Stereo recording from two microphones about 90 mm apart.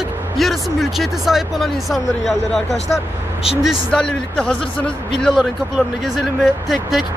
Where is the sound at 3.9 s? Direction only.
10° left (ahead or behind).